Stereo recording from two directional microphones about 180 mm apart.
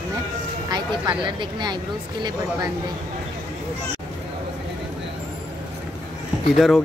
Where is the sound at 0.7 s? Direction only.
25° right (ahead or behind).